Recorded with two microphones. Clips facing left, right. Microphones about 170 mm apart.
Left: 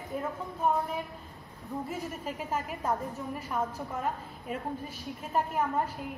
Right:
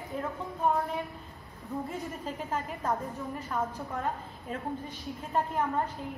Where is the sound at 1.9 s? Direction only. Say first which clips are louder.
Even; 10° left (ahead or behind).